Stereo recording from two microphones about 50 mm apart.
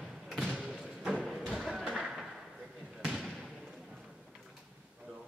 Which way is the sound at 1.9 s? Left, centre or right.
Centre.